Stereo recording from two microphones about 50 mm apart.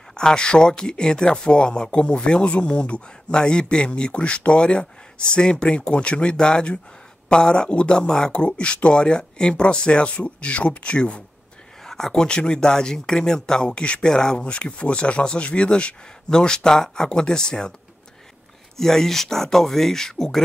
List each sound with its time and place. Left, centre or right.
0.1 s speech: centre
11.8 s speech: centre
18.8 s speech: centre